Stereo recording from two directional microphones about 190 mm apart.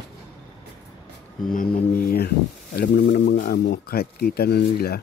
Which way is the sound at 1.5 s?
50° left (ahead or behind).